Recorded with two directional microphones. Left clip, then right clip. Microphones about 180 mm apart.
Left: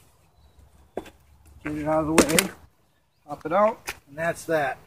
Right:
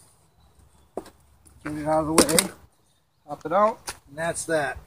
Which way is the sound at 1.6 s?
5° left (ahead or behind).